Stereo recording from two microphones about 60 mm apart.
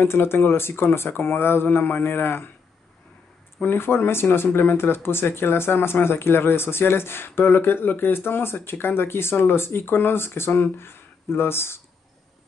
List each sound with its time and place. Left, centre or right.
0.0 s speech: left
3.6 s speech: left